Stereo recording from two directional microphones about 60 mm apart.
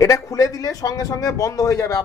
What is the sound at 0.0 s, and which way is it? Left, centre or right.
A man's voice, left.